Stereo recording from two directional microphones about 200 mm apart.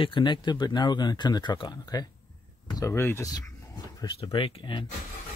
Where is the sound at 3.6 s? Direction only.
15° left (ahead or behind).